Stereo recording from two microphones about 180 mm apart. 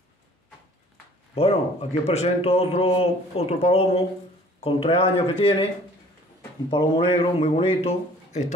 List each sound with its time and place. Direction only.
1.3 s a man's voice: 35° left (ahead or behind)
6.7 s a man's voice: 30° left (ahead or behind)